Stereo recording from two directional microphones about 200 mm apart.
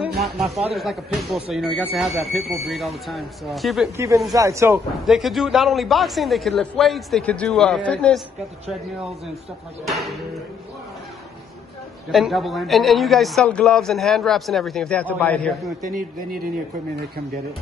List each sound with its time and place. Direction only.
0.7 s a man's voice: centre (ahead or behind)
3.9 s speech: 15° right (ahead or behind)
5.0 s a man's voice: centre (ahead or behind)
9.8 s a man's voice: centre (ahead or behind)
12.1 s a man's voice: centre (ahead or behind)
15.9 s a man's voice: 50° right (ahead or behind)